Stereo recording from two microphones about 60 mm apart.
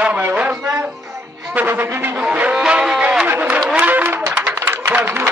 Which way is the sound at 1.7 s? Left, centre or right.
Right.